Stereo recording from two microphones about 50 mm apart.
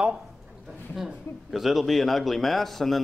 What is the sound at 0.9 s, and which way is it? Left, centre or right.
A man's voice, centre.